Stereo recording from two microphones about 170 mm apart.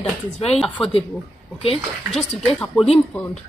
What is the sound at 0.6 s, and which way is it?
Speech, 5° left (ahead or behind).